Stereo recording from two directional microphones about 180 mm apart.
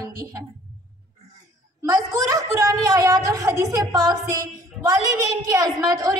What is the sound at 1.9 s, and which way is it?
A woman's voice, 20° right (ahead or behind).